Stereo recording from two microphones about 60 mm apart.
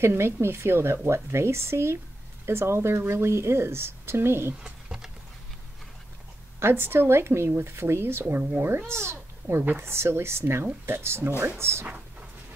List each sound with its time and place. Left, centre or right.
0.0 s speech: right
4.6 s a sound: centre
6.6 s speech: right